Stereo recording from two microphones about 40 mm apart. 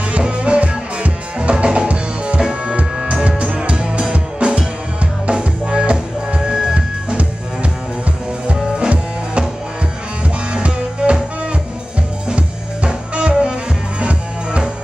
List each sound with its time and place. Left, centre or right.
0.1 s music: right
3.0 s music: centre
3.3 s music: right
8.7 s music: right
10.5 s music: right
12.3 s music: right